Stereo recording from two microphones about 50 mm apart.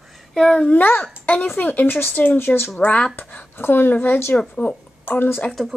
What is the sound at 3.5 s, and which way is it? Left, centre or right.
A woman's voice, left.